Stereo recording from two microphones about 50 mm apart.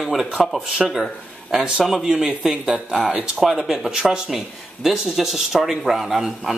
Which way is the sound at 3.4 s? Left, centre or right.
Centre.